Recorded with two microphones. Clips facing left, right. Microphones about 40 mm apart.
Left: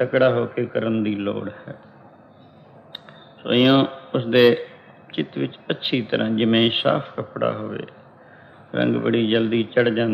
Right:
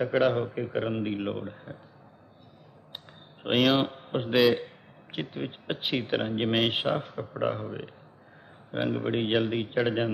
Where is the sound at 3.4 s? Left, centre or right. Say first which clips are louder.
Left 7 dB; left.